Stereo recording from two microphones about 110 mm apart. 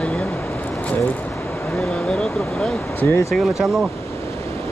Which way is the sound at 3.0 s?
25° left (ahead or behind).